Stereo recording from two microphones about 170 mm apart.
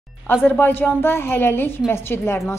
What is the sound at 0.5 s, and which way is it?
A woman's voice, 10° left (ahead or behind).